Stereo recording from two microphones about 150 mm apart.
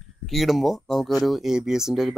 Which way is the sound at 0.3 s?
Centre (ahead or behind).